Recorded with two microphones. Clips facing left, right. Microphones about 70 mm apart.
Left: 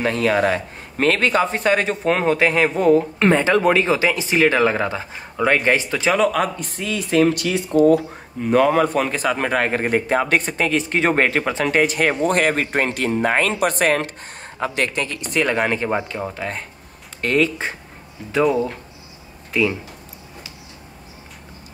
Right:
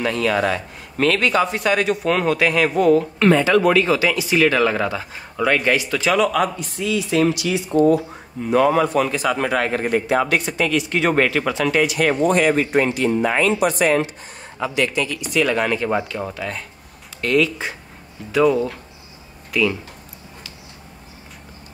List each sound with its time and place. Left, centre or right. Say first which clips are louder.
0.0 s a man's voice: left 1 dB; left
6.2 s a man's voice: even; left
12.3 s a man's voice: right 2 dB; left
15.9 s a man's voice: right 1 dB; left